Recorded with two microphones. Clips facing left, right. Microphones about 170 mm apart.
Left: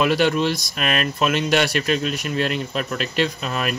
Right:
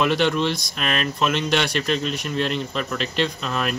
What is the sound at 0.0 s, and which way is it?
Speech, 5° left (ahead or behind).